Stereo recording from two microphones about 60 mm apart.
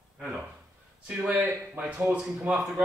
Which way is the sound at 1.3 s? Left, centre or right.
Right.